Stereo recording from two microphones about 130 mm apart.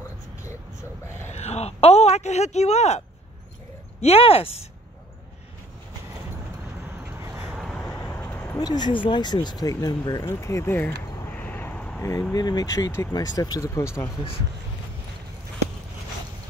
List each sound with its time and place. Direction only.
1.3 s a sound: 55° left (ahead or behind)
4.0 s speech: 50° left (ahead or behind)
7.5 s vehicle: 5° left (ahead or behind)
7.9 s vehicle: 15° left (ahead or behind)
8.5 s speech: 30° left (ahead or behind)
11.1 s a sound: 15° left (ahead or behind)
12.0 s speech: 25° left (ahead or behind)